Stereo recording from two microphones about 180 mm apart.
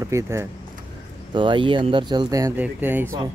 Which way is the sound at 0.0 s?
15° right (ahead or behind).